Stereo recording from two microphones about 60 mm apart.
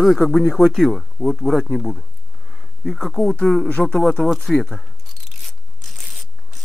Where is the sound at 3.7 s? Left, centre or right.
Centre.